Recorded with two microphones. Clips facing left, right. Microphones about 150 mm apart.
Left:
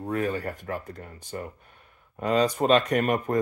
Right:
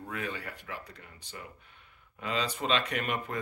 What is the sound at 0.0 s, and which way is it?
Speech, 40° left (ahead or behind).